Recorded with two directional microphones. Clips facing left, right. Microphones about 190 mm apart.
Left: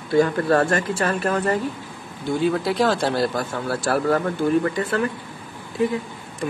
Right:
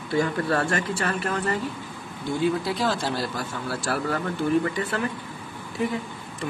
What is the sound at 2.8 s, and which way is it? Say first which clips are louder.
Speech: left 6 dB; 60° left (ahead or behind).